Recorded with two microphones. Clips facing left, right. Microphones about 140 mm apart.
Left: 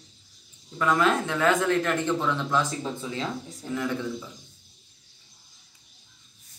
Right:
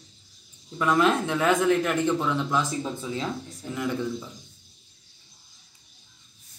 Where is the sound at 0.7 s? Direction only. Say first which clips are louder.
Right 1 dB; 20° right (ahead or behind).